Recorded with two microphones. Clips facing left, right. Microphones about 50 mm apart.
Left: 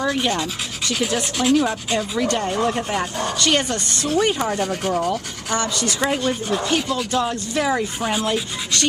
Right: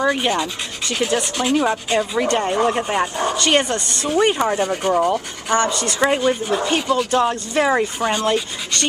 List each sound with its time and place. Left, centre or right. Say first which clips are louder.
0.0 s speech: right 3 dB; centre
2.1 s speech: right 2 dB; right
5.1 s speech: right 5 dB; centre
7.1 s speech: right 4 dB; right
8.0 s filing: right 3 dB; centre